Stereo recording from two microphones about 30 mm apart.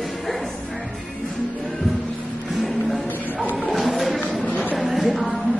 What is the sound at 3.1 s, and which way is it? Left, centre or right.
Music, left.